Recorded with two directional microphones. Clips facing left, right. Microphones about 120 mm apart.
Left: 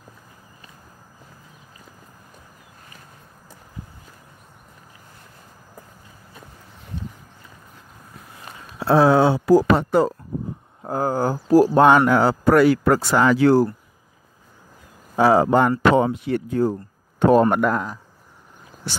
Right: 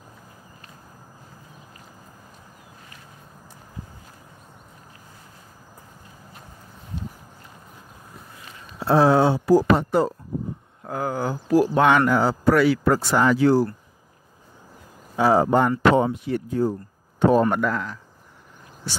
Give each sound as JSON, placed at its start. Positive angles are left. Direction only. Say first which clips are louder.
{"t": 8.7, "sound": "speech", "louder": "left 2 dB", "side_deg": 90}
{"t": 10.8, "sound": "speech", "louder": "left 5 dB", "side_deg": 35}
{"t": 12.1, "sound": "speech", "louder": "left 2 dB", "side_deg": 70}
{"t": 12.5, "sound": "speech", "louder": "left 5 dB", "side_deg": 50}
{"t": 12.9, "sound": "speech", "louder": "left 2 dB", "side_deg": 90}
{"t": 15.2, "sound": "speech", "louder": "left 2 dB", "side_deg": 85}